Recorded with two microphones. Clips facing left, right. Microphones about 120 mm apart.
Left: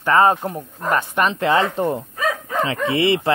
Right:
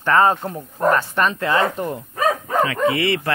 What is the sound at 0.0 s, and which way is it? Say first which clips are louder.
Speech: left 1 dB; 15° left (ahead or behind).